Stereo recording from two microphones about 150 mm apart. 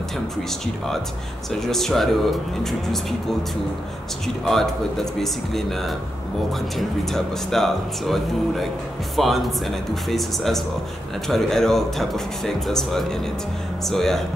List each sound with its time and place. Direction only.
1.5 s speech: centre (ahead or behind)
4.5 s speech: centre (ahead or behind)